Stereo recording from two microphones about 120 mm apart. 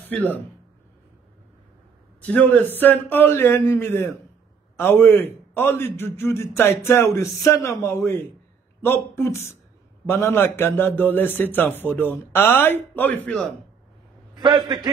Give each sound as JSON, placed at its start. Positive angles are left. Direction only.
{"t": 0.0, "sound": "speech", "side_deg": 15}
{"t": 2.2, "sound": "a man's voice", "side_deg": 10}
{"t": 14.3, "sound": "a man's voice", "side_deg": -35}